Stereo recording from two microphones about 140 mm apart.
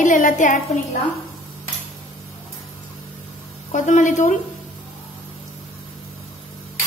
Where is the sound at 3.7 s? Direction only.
65° left (ahead or behind).